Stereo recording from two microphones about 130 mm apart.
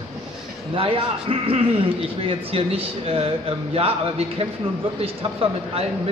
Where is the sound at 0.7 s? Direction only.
45° right (ahead or behind).